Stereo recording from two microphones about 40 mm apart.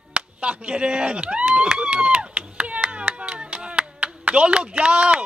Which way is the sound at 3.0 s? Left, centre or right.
Right.